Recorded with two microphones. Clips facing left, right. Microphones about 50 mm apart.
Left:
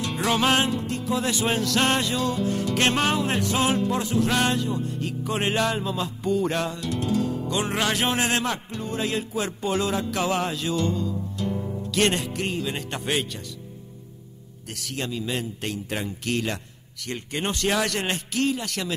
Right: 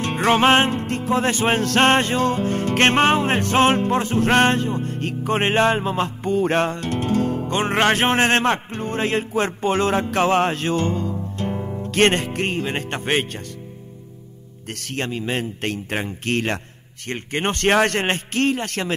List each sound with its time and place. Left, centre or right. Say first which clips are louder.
0.0 s music: right 6 dB; right
14.7 s a man's voice: right 4 dB; right